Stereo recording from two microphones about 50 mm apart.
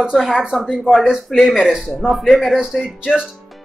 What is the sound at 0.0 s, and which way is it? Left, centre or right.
Speech, centre.